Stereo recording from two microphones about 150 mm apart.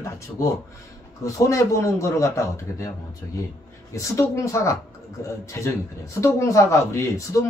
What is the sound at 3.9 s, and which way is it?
A man's voice, 20° left (ahead or behind).